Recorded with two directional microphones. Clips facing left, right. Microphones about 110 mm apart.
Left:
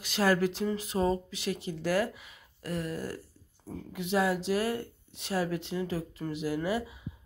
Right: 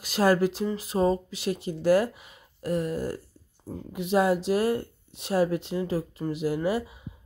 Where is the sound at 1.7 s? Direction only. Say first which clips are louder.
Right 10 dB; 20° right (ahead or behind).